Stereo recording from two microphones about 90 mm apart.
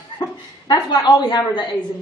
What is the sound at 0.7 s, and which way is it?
Speech, 50° left (ahead or behind).